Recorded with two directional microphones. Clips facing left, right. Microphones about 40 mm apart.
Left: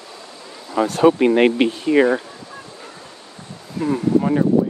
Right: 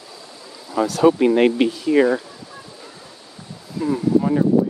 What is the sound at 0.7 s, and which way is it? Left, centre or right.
Speech, left.